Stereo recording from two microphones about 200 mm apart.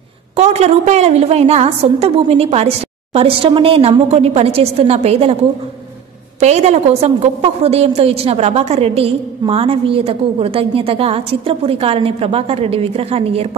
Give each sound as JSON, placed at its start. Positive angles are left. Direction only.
{"t": 0.4, "sound": "a woman's voice", "side_deg": -30}
{"t": 6.4, "sound": "a woman's voice", "side_deg": -35}